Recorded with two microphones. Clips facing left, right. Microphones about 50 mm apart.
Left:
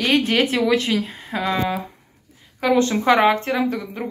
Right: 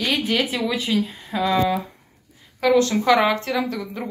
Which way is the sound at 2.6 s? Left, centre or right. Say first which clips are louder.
Even; left.